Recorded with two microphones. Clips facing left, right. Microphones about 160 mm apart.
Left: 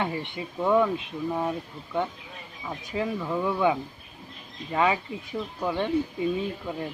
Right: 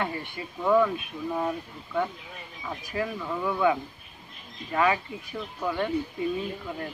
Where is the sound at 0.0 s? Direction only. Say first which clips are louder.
Left 2 dB; 20° left (ahead or behind).